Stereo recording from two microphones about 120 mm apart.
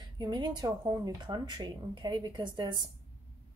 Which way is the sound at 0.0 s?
40° right (ahead or behind).